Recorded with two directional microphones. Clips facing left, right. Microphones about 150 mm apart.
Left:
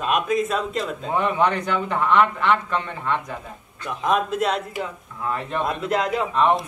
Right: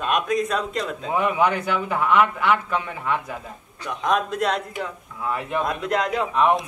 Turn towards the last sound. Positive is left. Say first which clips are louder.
# even
turn(degrees=-5)  # may be behind; listen again after turning